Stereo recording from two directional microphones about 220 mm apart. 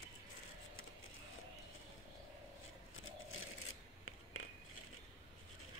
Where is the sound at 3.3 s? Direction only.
65° left (ahead or behind).